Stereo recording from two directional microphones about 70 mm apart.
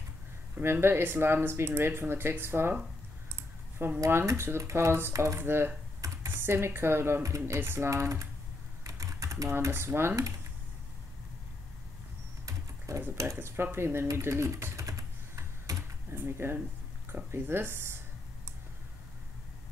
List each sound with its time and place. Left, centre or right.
0.6 s speech: right
3.7 s speech: right
5.1 s speech: right
5.4 s speech: right
7.9 s speech: right
8.8 s typing: right
12.4 s typing: right
13.4 s typing: right
16.1 s speech: right